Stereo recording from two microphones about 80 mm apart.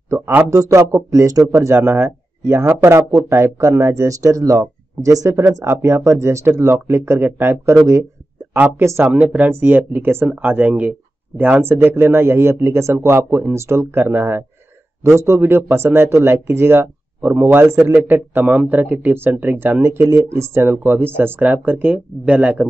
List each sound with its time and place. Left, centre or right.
0.5 s speech: right
7.7 s speech: right
8.7 s speech: right
9.1 s speech: centre; by 17.9 s right
17.9 s speech: right